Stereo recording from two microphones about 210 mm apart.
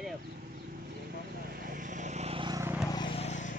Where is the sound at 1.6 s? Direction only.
40° right (ahead or behind); by 2.6 s 25° right (ahead or behind).